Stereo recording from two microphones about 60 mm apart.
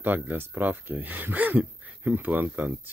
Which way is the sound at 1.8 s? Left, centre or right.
Right.